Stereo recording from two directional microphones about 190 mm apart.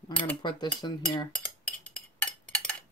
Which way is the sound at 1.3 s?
5° left (ahead or behind).